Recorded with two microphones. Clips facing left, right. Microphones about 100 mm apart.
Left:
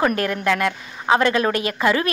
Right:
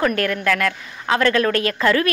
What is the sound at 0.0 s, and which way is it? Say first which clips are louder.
A woman's voice: even; 20° left (ahead or behind).